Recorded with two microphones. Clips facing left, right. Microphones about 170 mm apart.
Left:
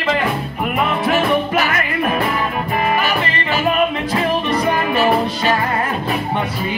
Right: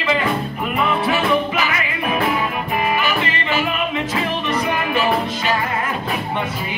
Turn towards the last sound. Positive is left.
turn(degrees=40)  # may be behind; listen again after turning